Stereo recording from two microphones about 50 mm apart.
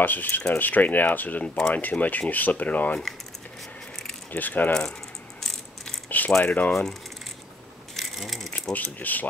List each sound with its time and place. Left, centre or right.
0.0 s speech: left
4.4 s speech: left
6.0 s keys jangling: left
6.4 s speech: left
6.7 s speech: centre
7.9 s a sound: centre
8.7 s speech: left